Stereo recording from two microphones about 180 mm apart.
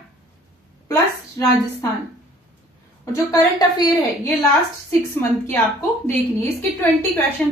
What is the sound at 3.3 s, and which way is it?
Speech, 20° left (ahead or behind).